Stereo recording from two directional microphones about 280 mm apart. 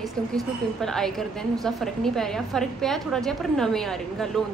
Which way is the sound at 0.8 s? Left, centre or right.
Centre.